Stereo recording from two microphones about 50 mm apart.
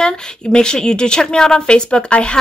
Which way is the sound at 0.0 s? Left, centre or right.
Centre.